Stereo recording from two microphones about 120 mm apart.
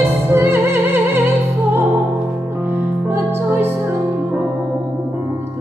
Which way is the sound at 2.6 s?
15° right (ahead or behind).